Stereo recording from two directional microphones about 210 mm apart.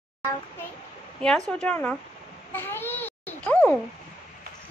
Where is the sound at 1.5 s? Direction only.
5° left (ahead or behind).